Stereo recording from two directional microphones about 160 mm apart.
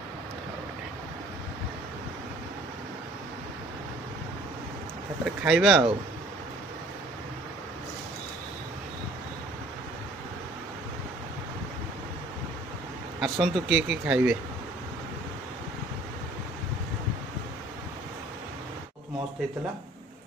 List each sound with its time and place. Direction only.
5.2 s speech: 5° right (ahead or behind)
13.2 s speech: 5° right (ahead or behind)